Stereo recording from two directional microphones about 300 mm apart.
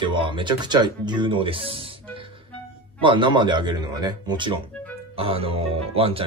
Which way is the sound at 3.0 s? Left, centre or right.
Centre.